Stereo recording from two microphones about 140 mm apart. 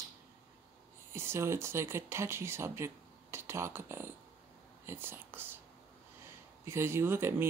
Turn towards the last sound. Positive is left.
turn(degrees=-15)  # may be behind; listen again after turning